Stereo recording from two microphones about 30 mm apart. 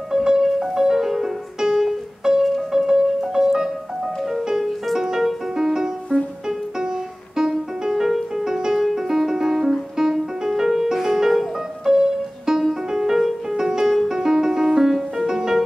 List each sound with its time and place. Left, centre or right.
0.1 s music: right
4.9 s music: centre
7.3 s music: right
14.9 s music: centre
15.2 s music: centre